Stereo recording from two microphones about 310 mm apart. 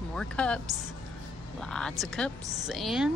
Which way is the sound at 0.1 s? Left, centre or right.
Centre.